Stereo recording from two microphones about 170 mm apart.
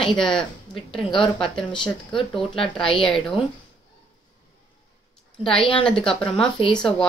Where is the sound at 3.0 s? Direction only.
Centre (ahead or behind).